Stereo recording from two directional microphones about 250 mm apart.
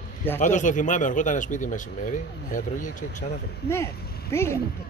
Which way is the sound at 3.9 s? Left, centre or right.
Left.